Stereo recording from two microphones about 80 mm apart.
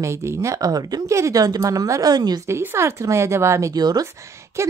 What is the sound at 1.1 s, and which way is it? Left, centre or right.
A woman's voice, right.